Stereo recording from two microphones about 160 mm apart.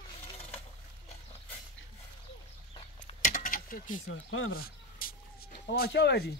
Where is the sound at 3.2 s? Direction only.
55° left (ahead or behind).